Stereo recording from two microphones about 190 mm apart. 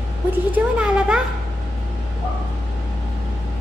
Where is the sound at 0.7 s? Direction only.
5° right (ahead or behind).